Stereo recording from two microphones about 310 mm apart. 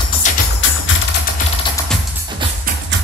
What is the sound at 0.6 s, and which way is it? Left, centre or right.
Music, left.